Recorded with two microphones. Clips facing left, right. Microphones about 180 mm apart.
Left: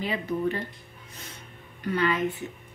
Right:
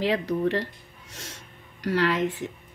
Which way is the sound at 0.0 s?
90° right.